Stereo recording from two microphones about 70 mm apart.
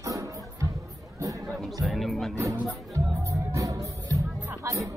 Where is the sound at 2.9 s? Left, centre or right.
Right.